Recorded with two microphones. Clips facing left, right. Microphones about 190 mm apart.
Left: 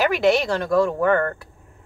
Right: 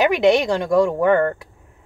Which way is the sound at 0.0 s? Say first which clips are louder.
Right 3 dB; 20° right (ahead or behind).